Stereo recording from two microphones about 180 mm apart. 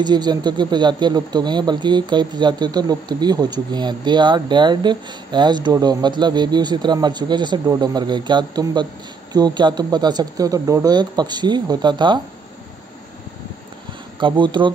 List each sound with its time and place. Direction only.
0.0 s speech: 25° right (ahead or behind)
14.2 s speech: 25° right (ahead or behind)